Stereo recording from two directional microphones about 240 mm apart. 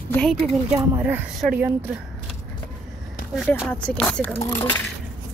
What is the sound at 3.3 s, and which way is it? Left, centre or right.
Speech, centre.